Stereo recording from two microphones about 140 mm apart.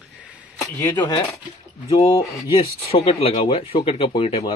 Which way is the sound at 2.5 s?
40° left (ahead or behind).